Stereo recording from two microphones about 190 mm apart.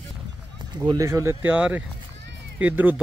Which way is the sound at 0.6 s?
20° right (ahead or behind).